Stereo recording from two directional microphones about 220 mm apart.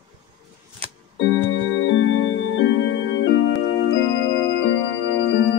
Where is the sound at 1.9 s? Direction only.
60° left (ahead or behind).